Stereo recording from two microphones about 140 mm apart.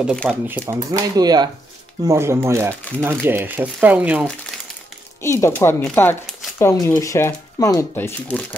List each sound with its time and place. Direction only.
0.0 s speech: 5° left (ahead or behind)
0.3 s speech: 10° right (ahead or behind)
0.7 s speech: 30° right (ahead or behind)
2.0 s speech: 20° right (ahead or behind)
5.2 s speech: 20° left (ahead or behind)